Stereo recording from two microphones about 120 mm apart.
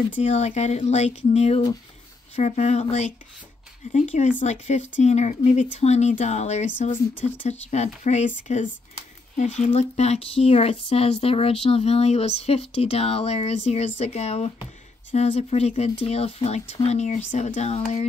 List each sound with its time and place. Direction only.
0.2 s speech: 65° left (ahead or behind)
2.3 s speech: 75° left (ahead or behind)
3.9 s speech: 85° left
4.4 s speech: 75° left (ahead or behind)